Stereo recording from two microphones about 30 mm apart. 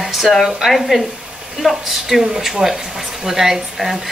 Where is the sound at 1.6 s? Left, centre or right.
Centre.